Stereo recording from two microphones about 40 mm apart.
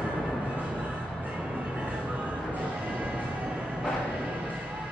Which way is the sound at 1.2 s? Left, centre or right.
Right.